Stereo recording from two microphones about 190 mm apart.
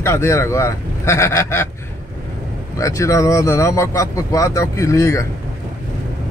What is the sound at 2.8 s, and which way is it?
Speech, 15° left (ahead or behind).